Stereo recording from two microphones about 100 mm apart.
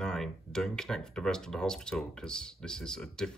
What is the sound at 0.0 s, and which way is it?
Speech, 5° left (ahead or behind).